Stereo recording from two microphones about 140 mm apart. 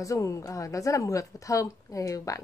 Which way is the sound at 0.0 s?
25° left (ahead or behind).